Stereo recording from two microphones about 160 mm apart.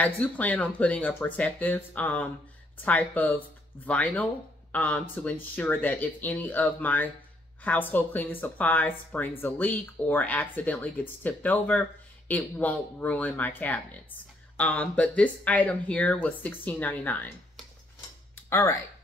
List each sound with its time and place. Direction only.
0.0 s speech: 10° left (ahead or behind)
18.5 s speech: 15° left (ahead or behind)